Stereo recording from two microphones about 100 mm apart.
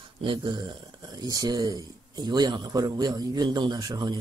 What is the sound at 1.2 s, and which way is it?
Speech, 40° right (ahead or behind).